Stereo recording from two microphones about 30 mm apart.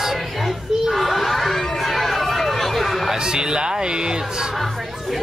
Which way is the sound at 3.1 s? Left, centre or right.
Right.